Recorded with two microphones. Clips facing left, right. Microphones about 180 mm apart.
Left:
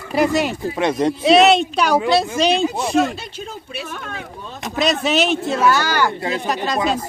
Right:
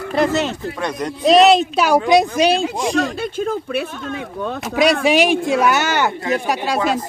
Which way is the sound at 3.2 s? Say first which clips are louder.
Right 11 dB; 55° right (ahead or behind).